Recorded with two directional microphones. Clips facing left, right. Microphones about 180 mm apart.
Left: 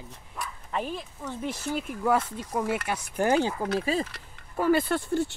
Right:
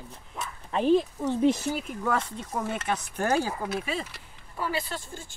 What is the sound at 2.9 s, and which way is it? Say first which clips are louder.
Speech: left 1 dB; 15° left (ahead or behind).